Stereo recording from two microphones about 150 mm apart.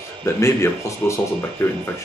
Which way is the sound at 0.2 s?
20° left (ahead or behind).